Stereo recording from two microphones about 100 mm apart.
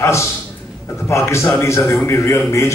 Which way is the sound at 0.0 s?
30° left (ahead or behind).